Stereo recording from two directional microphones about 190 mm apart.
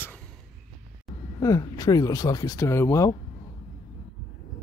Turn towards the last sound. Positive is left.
turn(degrees=15)  # may be behind; listen again after turning